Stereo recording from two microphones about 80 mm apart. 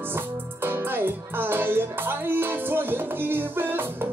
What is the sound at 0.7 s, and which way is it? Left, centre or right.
Music, right.